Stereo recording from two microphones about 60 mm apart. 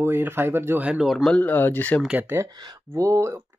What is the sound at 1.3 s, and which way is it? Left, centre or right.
Speech, left.